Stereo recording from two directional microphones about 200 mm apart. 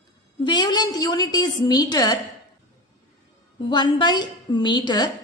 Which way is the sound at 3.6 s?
20° left (ahead or behind).